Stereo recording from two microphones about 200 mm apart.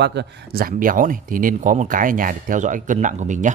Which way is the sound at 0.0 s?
60° right (ahead or behind).